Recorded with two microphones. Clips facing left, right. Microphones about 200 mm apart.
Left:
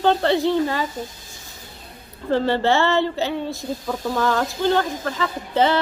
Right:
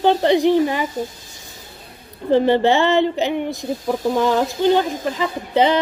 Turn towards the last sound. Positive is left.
turn(degrees=-15)  # may be behind; listen again after turning